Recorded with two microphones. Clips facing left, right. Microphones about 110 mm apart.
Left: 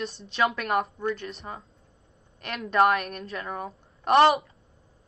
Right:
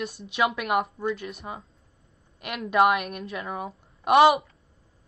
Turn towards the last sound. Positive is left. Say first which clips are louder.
# right 1 dB
turn(degrees=-5)  # may be behind; listen again after turning